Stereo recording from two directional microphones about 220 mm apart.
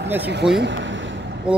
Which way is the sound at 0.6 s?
55° right (ahead or behind).